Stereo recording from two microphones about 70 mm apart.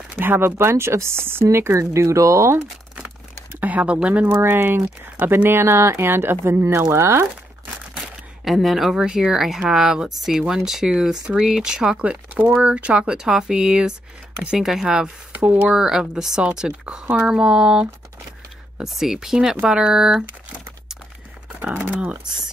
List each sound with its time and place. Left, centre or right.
0.1 s speech: right
3.6 s speech: centre; by 7.2 s right
8.5 s speech: centre
15.3 s speech: right
15.7 s speech: centre
18.9 s speech: centre
21.9 s speech: right